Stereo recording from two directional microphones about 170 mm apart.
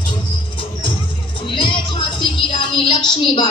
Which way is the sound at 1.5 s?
30° left (ahead or behind).